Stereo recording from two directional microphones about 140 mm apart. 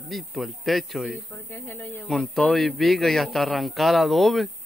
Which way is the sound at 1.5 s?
15° left (ahead or behind).